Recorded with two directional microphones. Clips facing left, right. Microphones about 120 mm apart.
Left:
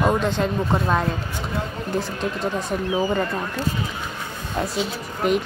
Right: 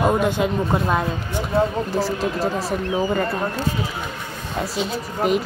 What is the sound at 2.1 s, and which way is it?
Speech, 5° right (ahead or behind).